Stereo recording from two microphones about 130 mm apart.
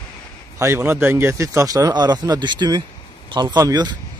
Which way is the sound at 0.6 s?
20° right (ahead or behind).